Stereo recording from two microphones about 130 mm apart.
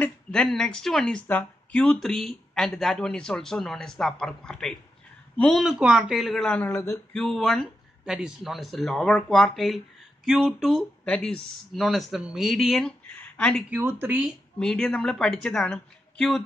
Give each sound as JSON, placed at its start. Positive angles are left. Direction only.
{"t": 0.0, "sound": "a man's voice", "side_deg": 5}
{"t": 13.7, "sound": "speech", "side_deg": -15}
{"t": 14.6, "sound": "a man's voice", "side_deg": 5}